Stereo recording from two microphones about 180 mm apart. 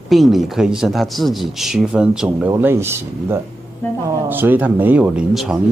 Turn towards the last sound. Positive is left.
turn(degrees=-5)  # may be behind; listen again after turning